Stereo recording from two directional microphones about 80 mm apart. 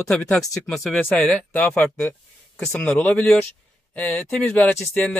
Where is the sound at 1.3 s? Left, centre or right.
Centre.